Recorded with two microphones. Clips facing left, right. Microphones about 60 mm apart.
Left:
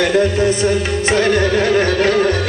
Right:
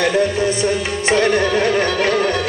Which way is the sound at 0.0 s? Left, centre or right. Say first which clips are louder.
Left 2 dB; left.